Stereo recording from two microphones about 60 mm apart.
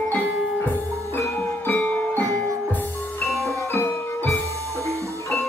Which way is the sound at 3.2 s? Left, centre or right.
Centre.